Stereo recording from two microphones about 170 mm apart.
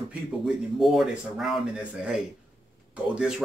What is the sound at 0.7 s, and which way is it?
Speech, centre (ahead or behind).